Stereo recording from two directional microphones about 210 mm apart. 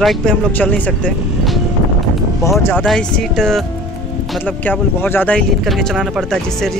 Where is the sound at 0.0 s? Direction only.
Centre (ahead or behind).